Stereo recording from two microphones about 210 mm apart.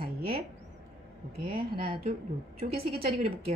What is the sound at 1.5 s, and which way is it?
A woman's voice, 25° right (ahead or behind).